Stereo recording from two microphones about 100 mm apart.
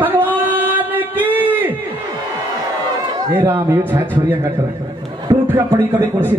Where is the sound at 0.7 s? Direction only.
20° right (ahead or behind).